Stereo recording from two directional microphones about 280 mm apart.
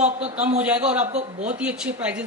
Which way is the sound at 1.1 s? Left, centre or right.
Right.